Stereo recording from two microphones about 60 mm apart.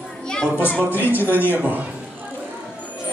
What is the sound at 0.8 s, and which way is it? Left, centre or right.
A man's voice, right.